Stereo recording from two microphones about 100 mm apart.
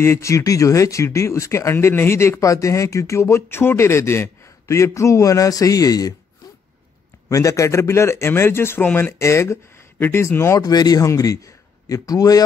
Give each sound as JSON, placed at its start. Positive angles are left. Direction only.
{"t": 0.0, "sound": "speech", "side_deg": 30}
{"t": 7.2, "sound": "speech", "side_deg": 30}
{"t": 10.6, "sound": "a man's voice", "side_deg": 40}